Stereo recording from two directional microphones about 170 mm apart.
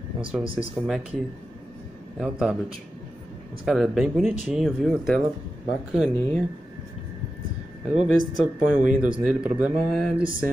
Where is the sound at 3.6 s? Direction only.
Centre (ahead or behind).